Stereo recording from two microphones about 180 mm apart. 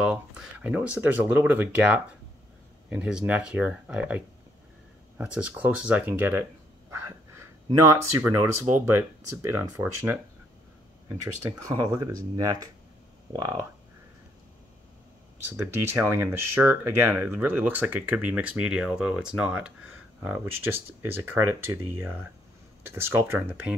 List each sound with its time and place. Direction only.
0.0 s speech: 5° right (ahead or behind)
11.6 s speech: 20° right (ahead or behind)
15.5 s speech: 15° right (ahead or behind)